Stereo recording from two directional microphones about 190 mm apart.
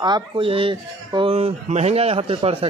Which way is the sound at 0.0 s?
25° right (ahead or behind).